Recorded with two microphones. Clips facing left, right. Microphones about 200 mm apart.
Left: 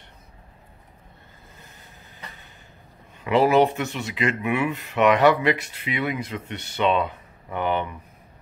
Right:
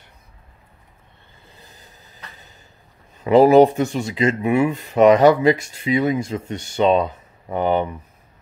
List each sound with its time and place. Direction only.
3.3 s speech: 40° right (ahead or behind)